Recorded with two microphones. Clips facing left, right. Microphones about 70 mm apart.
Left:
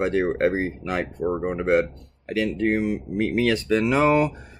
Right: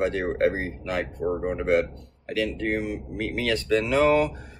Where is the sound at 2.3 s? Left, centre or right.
Centre.